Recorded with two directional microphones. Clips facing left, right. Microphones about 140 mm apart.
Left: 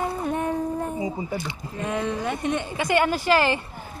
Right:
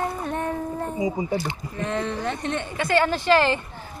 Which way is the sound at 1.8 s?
10° left (ahead or behind).